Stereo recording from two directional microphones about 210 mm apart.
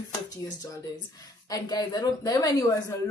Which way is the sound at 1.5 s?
20° left (ahead or behind).